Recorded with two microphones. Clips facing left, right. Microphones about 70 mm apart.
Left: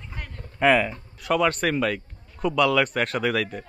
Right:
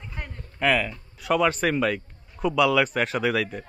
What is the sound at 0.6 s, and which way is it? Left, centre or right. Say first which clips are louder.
Speech: left 4 dB; centre.